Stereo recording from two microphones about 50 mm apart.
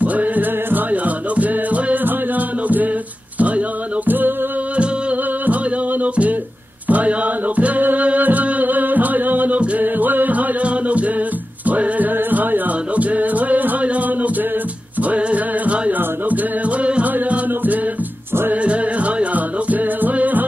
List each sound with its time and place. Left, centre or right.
0.0 s music: right
3.3 s a sound: right
4.7 s music: right
6.9 s music: right